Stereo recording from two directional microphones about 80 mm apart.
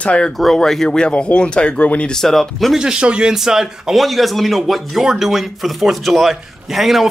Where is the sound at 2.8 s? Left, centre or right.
Centre.